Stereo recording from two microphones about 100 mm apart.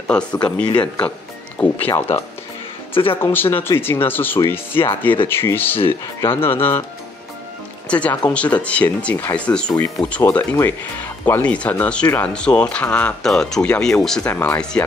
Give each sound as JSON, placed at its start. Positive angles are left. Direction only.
{"t": 0.1, "sound": "speech", "side_deg": 10}
{"t": 2.9, "sound": "speech", "side_deg": 65}
{"t": 3.2, "sound": "speech", "side_deg": 25}
{"t": 7.9, "sound": "speech", "side_deg": 15}
{"t": 10.2, "sound": "speech", "side_deg": 25}
{"t": 14.3, "sound": "speech", "side_deg": 20}
{"t": 14.6, "sound": "speech", "side_deg": 10}